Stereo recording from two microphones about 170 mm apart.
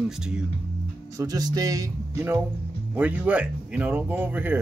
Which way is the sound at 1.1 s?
20° right (ahead or behind).